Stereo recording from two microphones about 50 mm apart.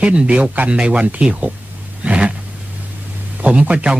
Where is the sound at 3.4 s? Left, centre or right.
Right.